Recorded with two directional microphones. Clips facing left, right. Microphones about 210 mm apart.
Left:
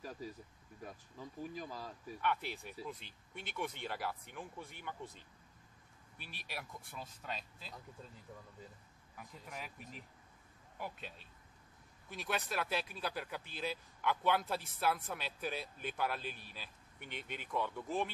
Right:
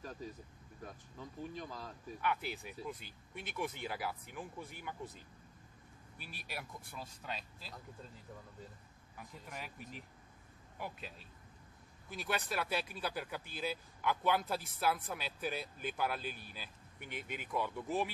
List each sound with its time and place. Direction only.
0.0 s vehicle: 10° left (ahead or behind)
0.8 s speech: 5° left (ahead or behind)
6.1 s speech: 45° right (ahead or behind)
6.5 s speech: centre (ahead or behind)
9.1 s speech: centre (ahead or behind)